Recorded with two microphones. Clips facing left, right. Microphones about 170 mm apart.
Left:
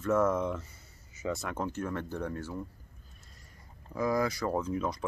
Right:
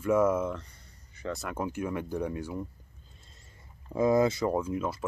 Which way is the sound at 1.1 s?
5° left (ahead or behind).